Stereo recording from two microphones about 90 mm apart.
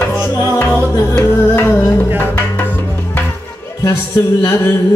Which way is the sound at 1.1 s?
20° left (ahead or behind).